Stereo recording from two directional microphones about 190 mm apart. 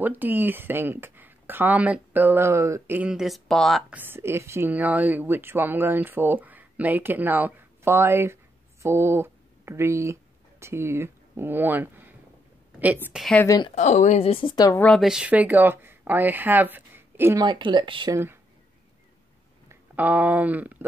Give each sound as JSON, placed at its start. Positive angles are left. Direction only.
{"t": 0.0, "sound": "speech", "side_deg": -10}
{"t": 4.0, "sound": "speech", "side_deg": -10}
{"t": 13.2, "sound": "speech", "side_deg": 5}
{"t": 13.5, "sound": "speech", "side_deg": 25}
{"t": 13.7, "sound": "a woman's voice", "side_deg": 40}
{"t": 14.8, "sound": "speech", "side_deg": 5}
{"t": 18.1, "sound": "speech", "side_deg": -10}
{"t": 19.7, "sound": "speech", "side_deg": -10}